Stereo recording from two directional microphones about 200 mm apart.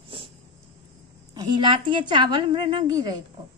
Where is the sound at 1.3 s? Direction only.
20° right (ahead or behind).